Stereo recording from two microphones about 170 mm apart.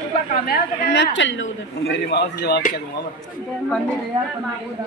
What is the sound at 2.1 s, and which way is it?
Speech, 75° left (ahead or behind).